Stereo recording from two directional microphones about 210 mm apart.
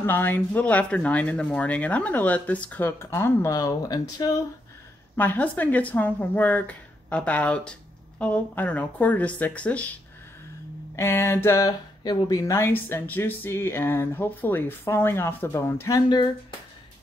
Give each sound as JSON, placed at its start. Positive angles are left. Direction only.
{"t": 0.0, "sound": "speech", "side_deg": 10}
{"t": 11.0, "sound": "speech", "side_deg": 10}